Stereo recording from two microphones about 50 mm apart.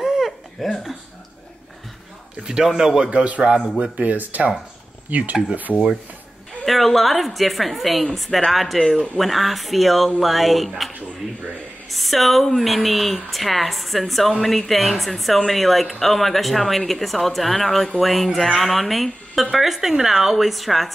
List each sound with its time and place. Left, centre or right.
0.0 s a sound: centre
2.4 s a man's voice: centre
3.1 s a man's voice: right
3.5 s a man's voice: centre
4.0 s speech: right
6.6 s speech: centre
11.9 s speech: centre